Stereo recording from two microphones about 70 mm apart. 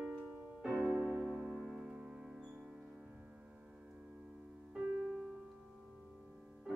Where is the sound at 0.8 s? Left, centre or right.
Centre.